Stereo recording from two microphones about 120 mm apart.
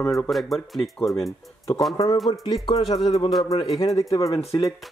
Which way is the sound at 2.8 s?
50° left (ahead or behind).